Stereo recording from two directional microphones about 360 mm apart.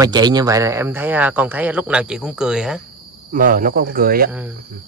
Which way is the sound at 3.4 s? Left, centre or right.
Right.